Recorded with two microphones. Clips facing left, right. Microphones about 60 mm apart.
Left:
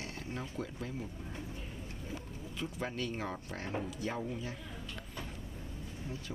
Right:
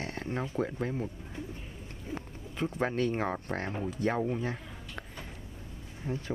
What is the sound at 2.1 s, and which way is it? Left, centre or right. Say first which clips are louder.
Speech: right 7 dB; right.